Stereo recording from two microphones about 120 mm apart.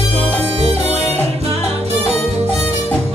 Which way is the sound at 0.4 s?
60° right (ahead or behind).